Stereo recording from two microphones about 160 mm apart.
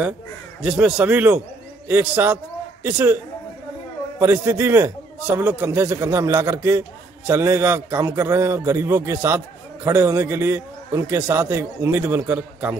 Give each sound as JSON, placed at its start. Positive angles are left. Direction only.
{"t": 0.6, "sound": "a man's voice", "side_deg": -5}
{"t": 4.2, "sound": "a man's voice", "side_deg": -15}